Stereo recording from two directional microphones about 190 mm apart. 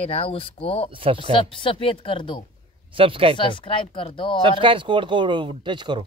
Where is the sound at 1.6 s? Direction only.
25° left (ahead or behind).